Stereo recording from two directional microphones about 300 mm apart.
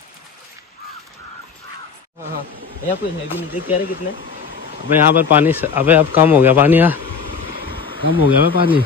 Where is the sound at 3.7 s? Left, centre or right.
Left.